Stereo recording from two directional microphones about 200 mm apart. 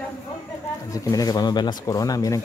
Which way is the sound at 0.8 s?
15° left (ahead or behind).